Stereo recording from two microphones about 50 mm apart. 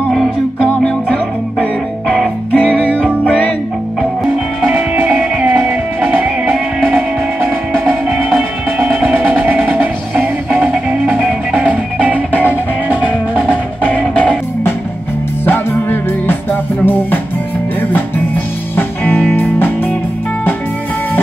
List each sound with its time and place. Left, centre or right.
1.0 s music: left
4.9 s music: right
6.5 s music: centre
8.8 s music: right
13.5 s music: left
15.4 s music: left
18.8 s music: left